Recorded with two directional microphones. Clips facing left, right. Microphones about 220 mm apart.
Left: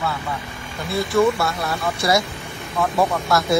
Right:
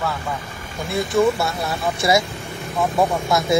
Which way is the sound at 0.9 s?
20° right (ahead or behind).